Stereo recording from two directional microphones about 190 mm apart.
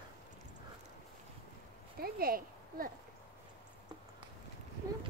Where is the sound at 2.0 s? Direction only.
50° right (ahead or behind).